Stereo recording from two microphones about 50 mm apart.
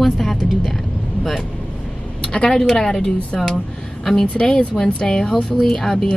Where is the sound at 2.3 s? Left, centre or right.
Centre.